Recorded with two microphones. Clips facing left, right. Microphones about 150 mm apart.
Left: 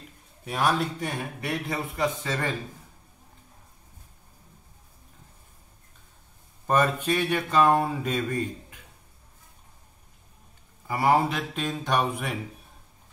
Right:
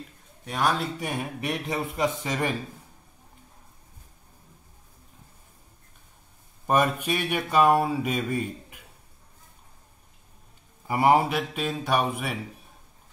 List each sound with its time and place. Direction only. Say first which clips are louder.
0.5 s a man's voice: left 1 dB; centre (ahead or behind)
0.9 s speech: right 1 dB; 10° right (ahead or behind)
6.7 s speech: even; 10° right (ahead or behind)
10.9 s speech: right 2 dB; 20° right (ahead or behind)